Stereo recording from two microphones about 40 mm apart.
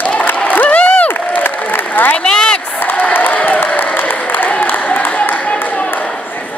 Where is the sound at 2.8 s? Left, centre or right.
Left.